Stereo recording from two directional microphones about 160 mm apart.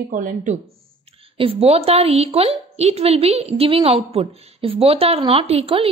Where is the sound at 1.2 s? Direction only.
35° right (ahead or behind).